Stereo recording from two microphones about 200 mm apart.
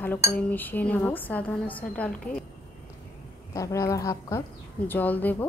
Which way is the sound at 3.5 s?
15° left (ahead or behind).